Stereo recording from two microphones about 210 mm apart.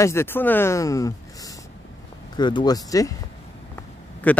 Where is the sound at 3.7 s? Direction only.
10° left (ahead or behind).